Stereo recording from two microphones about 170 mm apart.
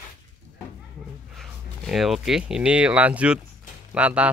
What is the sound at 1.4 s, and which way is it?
Speech, centre (ahead or behind).